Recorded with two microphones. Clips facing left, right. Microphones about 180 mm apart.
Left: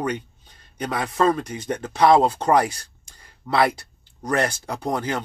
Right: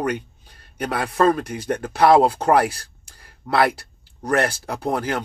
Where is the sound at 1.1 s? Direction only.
55° right (ahead or behind).